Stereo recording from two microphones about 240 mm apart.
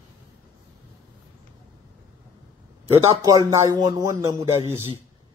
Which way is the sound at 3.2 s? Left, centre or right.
Centre.